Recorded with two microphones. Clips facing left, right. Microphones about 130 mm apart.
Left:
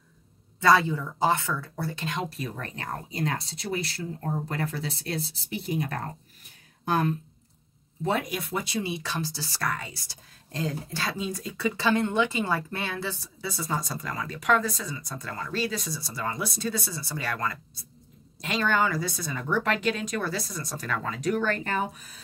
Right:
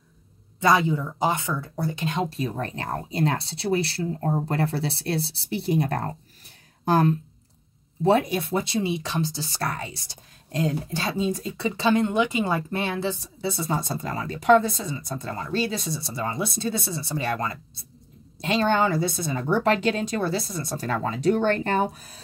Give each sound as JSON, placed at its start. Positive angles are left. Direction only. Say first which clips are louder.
{"t": 0.6, "sound": "a woman's voice", "louder": "right 1 dB", "side_deg": -15}